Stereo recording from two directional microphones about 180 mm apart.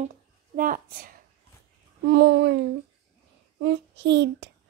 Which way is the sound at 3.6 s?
75° right (ahead or behind).